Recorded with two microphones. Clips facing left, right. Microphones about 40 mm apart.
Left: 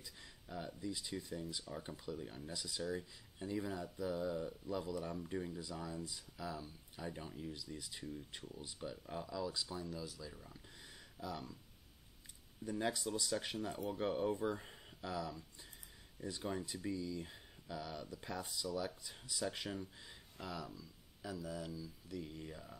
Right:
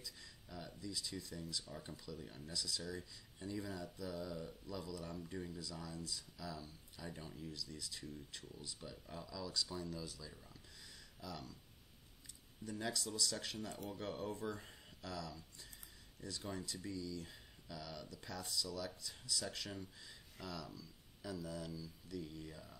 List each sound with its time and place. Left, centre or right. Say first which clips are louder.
0.0 s speech: even; left
12.6 s speech: left 4 dB; left